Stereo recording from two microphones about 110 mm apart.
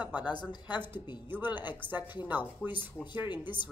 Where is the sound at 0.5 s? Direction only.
45° left (ahead or behind).